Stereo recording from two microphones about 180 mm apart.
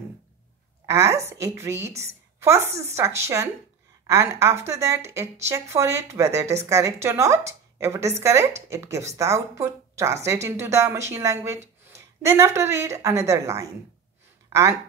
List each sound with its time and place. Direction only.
0.8 s speech: 15° right (ahead or behind)